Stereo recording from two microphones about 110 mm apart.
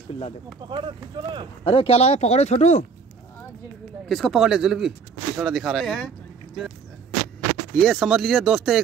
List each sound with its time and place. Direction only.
0.6 s speech: 45° right (ahead or behind)
1.6 s speech: 60° left (ahead or behind); by 2.8 s 90° left
4.1 s speech: centre (ahead or behind)
7.7 s speech: 5° left (ahead or behind)